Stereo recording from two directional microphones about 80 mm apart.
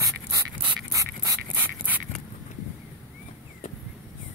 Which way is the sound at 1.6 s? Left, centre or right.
Right.